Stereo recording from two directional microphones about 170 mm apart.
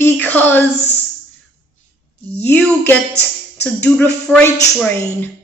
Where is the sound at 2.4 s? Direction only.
10° left (ahead or behind).